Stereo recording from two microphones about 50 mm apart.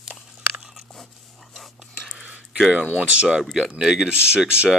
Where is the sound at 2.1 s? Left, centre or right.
Right.